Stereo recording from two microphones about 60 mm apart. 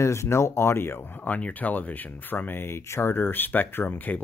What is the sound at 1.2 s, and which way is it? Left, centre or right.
Speech, left.